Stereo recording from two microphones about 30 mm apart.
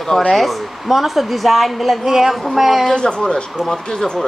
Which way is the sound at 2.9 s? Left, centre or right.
Left.